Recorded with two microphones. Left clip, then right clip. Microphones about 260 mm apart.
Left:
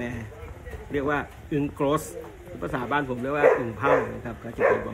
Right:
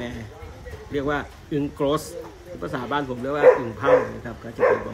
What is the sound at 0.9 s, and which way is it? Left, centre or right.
A man's voice, centre.